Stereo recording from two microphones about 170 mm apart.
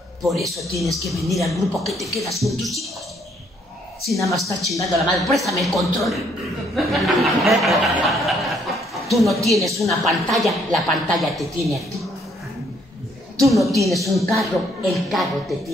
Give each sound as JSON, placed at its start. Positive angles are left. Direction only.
{"t": 0.2, "sound": "speech", "side_deg": 0}
{"t": 4.1, "sound": "speech", "side_deg": 0}
{"t": 6.7, "sound": "chuckle", "side_deg": 0}
{"t": 9.0, "sound": "a woman's voice", "side_deg": 0}
{"t": 13.4, "sound": "speech", "side_deg": 0}